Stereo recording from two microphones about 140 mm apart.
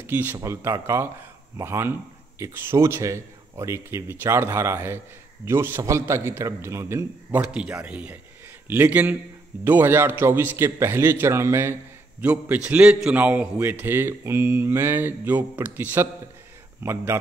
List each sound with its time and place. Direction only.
0.0 s speech: 15° right (ahead or behind)